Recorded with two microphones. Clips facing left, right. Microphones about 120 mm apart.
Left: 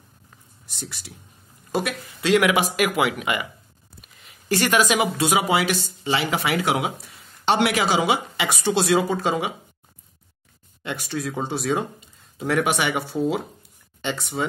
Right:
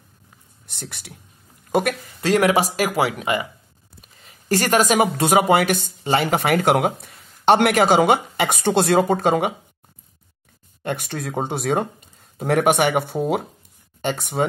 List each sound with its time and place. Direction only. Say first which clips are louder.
0.7 s speech: right 1 dB; 60° right (ahead or behind)
10.8 s speech: right 2 dB; 50° right (ahead or behind)